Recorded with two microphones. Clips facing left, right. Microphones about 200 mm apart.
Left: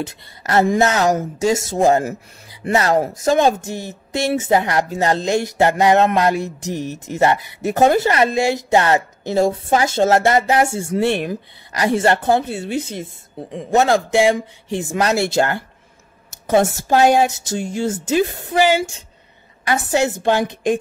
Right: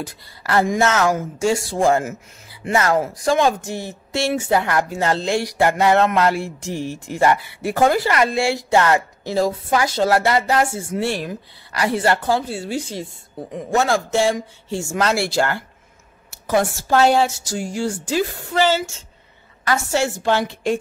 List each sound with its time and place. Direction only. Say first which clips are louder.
0.0 s music: left 3 dB; 25° left (ahead or behind)
2.7 s music: left 2 dB; 35° left (ahead or behind)
3.7 s music: left 1 dB; 20° left (ahead or behind)
19.6 s a woman's voice: left 2 dB; 15° left (ahead or behind)